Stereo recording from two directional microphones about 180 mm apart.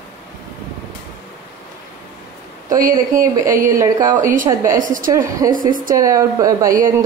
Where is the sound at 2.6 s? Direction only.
50° right (ahead or behind).